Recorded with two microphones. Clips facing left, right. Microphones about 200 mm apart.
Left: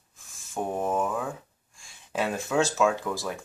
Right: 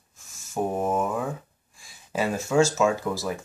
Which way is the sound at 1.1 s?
Centre (ahead or behind).